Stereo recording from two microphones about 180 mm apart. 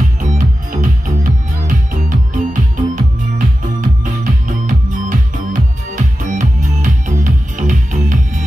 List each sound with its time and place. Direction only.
0.2 s music: 45° right (ahead or behind)